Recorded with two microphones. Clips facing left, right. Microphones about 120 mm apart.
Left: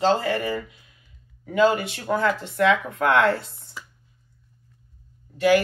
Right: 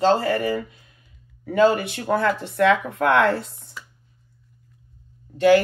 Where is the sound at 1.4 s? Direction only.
45° right (ahead or behind).